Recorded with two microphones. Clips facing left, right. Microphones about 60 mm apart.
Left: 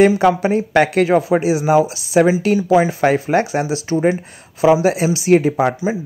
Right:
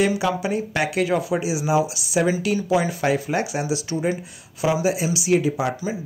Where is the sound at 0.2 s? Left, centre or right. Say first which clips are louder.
Left 8 dB; left.